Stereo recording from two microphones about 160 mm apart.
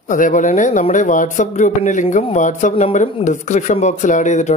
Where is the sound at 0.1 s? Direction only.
55° left (ahead or behind).